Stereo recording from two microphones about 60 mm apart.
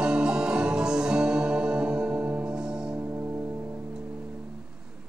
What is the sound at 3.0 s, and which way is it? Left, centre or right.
Music, right.